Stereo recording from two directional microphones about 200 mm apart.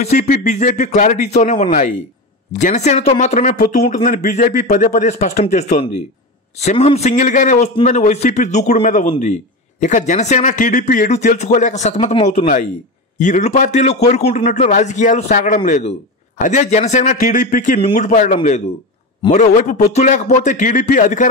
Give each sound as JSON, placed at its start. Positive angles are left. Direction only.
{"t": 0.0, "sound": "a man's voice", "side_deg": 40}